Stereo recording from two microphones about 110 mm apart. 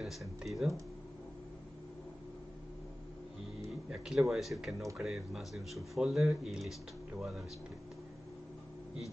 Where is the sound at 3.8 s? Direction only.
5° right (ahead or behind).